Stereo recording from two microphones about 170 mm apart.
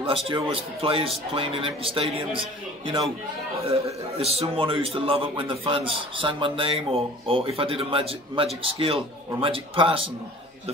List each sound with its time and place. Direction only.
0.3 s a man's voice: 30° right (ahead or behind)
3.6 s a man's voice: 35° right (ahead or behind)